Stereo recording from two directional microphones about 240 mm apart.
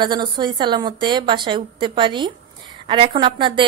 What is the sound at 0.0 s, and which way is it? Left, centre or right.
A woman's voice, centre.